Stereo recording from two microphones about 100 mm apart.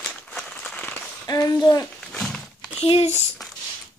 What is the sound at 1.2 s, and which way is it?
Speech, 35° left (ahead or behind).